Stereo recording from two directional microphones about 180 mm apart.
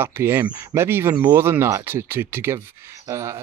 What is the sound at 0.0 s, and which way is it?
Speech, 15° right (ahead or behind).